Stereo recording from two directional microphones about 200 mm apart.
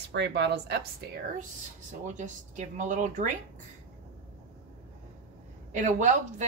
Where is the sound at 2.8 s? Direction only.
40° right (ahead or behind).